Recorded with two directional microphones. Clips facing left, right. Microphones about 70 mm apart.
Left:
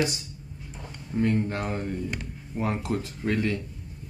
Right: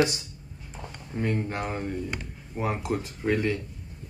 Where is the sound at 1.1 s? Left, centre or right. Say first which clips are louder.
Left 3 dB; right.